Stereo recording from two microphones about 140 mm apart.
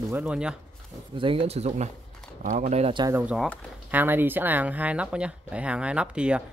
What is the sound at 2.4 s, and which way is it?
Speech, 65° right (ahead or behind).